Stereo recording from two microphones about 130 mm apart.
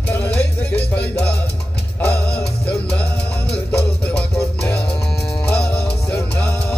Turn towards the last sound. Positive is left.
turn(degrees=10)  # may be behind; listen again after turning